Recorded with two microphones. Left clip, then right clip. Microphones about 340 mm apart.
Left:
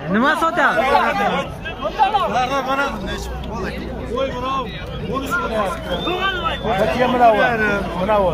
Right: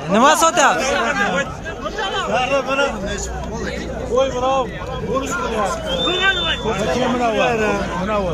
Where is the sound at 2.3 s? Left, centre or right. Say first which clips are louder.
Right 1 dB; centre.